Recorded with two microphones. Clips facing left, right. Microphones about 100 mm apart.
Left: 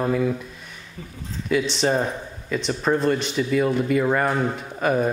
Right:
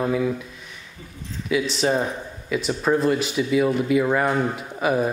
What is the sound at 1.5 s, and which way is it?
A man's voice, 5° right (ahead or behind).